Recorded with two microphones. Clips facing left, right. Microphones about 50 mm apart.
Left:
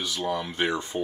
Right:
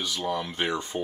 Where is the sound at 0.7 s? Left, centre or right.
Left.